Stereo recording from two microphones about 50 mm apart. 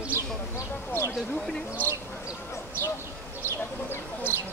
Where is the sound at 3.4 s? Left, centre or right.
Left.